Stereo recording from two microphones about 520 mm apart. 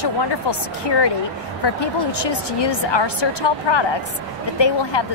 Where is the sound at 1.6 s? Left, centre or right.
Left.